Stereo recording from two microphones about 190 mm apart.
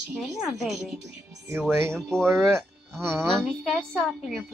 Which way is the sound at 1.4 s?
15° right (ahead or behind).